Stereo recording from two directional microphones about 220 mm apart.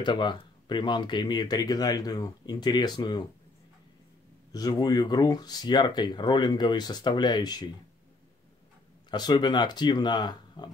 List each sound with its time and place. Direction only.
0.0 s speech: 20° left (ahead or behind)
4.5 s speech: 15° left (ahead or behind)
9.1 s speech: 20° left (ahead or behind)